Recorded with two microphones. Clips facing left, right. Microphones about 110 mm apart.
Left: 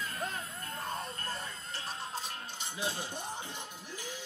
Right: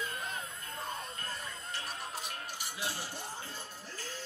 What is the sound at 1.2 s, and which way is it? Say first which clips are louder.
Music: left 2 dB; 35° left (ahead or behind).